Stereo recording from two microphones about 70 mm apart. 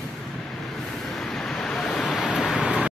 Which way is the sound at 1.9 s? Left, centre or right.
Centre.